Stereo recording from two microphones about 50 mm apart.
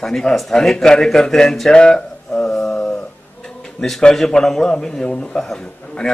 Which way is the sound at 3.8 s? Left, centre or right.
Centre.